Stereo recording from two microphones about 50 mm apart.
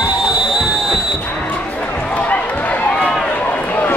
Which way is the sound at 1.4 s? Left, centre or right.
Left.